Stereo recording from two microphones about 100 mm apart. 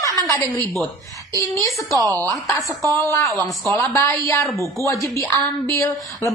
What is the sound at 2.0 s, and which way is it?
Speech, 35° right (ahead or behind).